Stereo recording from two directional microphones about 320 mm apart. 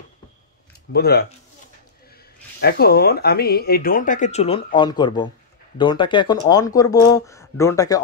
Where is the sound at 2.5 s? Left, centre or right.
Left.